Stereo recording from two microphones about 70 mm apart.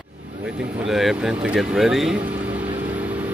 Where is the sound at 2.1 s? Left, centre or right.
Right.